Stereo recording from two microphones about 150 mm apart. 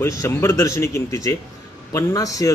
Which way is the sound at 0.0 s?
20° left (ahead or behind).